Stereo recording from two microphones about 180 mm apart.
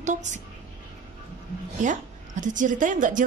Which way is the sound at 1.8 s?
45° right (ahead or behind).